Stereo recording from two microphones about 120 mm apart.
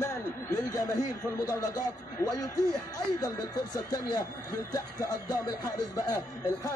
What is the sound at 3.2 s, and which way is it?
Speech, 30° left (ahead or behind).